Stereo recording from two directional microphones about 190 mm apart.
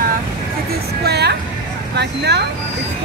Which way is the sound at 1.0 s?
60° right (ahead or behind).